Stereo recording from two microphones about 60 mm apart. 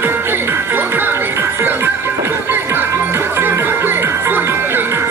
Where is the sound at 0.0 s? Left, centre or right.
Right.